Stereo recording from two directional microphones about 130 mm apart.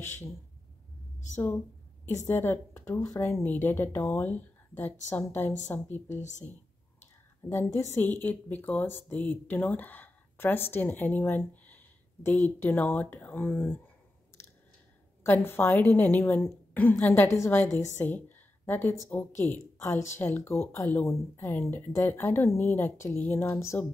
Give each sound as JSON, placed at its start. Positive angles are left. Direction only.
{"t": 0.0, "sound": "a woman's voice", "side_deg": 20}
{"t": 1.3, "sound": "a woman's voice", "side_deg": 15}
{"t": 7.4, "sound": "a woman's voice", "side_deg": 15}
{"t": 15.2, "sound": "a woman's voice", "side_deg": 15}